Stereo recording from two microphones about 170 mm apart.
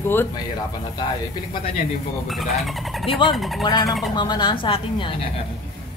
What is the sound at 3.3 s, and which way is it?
Speech, centre (ahead or behind).